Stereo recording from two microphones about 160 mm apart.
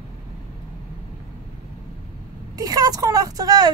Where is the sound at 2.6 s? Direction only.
25° right (ahead or behind).